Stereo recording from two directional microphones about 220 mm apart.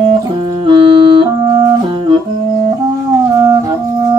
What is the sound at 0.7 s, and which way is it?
Music, 25° right (ahead or behind).